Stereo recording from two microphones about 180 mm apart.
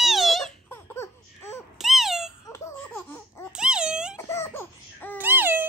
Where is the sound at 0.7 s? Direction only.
15° left (ahead or behind).